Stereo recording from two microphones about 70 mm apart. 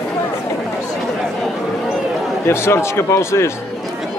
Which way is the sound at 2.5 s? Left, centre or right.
Left.